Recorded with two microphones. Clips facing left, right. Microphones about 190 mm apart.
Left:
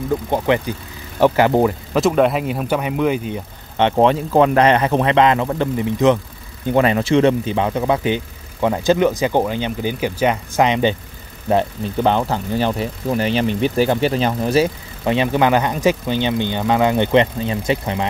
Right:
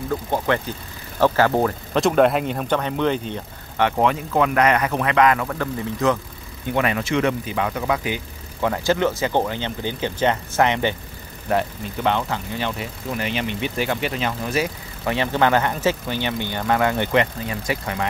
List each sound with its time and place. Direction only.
0.3 s speech: 15° left (ahead or behind)
2.0 s speech: centre (ahead or behind)
3.7 s speech: 25° left (ahead or behind)
6.7 s speech: 30° left (ahead or behind)
11.4 s speech: 30° left (ahead or behind)
15.0 s speech: 15° left (ahead or behind)